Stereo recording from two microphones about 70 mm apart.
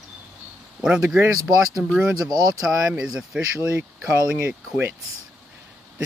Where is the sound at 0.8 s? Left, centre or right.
Centre.